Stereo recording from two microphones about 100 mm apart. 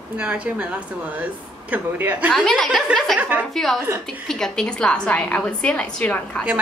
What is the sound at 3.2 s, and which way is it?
Speech, 15° right (ahead or behind).